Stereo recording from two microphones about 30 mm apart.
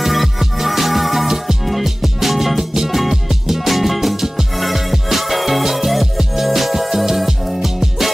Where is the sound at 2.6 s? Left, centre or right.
Centre.